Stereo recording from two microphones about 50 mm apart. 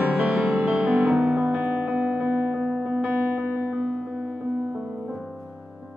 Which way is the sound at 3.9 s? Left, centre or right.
Centre.